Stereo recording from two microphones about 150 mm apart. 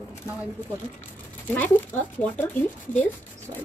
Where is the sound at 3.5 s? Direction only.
25° right (ahead or behind).